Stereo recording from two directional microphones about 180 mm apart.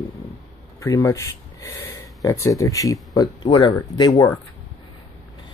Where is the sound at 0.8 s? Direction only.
15° left (ahead or behind).